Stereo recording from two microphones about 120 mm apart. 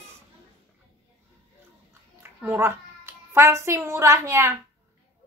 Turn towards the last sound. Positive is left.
turn(degrees=-25)  # may be behind; listen again after turning